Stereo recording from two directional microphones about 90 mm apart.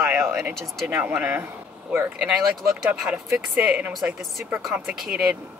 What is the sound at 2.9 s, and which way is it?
Speech, 10° right (ahead or behind).